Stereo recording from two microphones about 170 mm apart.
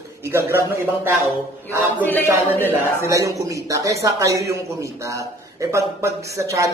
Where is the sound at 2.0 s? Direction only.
10° left (ahead or behind).